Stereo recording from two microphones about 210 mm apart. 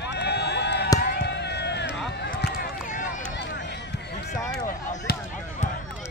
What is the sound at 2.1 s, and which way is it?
Run, 45° left (ahead or behind).